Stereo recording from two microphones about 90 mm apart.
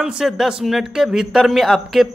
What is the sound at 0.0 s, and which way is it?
A man's voice, 5° right (ahead or behind).